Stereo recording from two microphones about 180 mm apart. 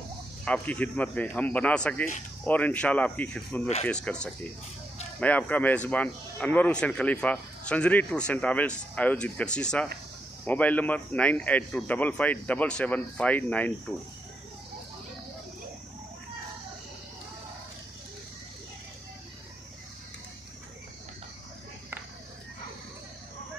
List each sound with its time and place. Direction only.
0.5 s speech: 10° left (ahead or behind)